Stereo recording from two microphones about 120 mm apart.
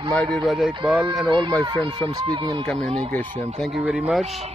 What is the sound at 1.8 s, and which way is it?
Speech, 40° right (ahead or behind).